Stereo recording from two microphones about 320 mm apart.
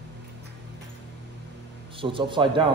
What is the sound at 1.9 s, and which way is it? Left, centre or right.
Speech, centre.